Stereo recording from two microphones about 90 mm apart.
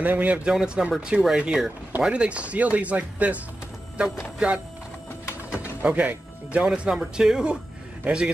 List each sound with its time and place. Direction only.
0.0 s speech: 20° right (ahead or behind)
5.5 s a man's voice: 15° right (ahead or behind)